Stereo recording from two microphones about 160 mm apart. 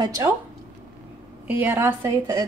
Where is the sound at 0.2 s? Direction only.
20° right (ahead or behind).